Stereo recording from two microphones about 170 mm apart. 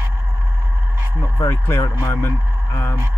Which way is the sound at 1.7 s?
15° left (ahead or behind).